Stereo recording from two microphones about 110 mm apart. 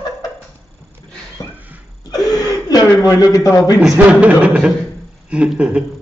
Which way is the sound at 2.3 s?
35° left (ahead or behind).